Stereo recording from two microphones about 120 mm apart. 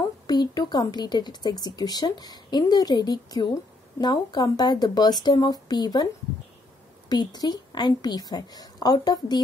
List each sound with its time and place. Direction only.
0.3 s speech: 35° left (ahead or behind)
7.1 s speech: 35° left (ahead or behind)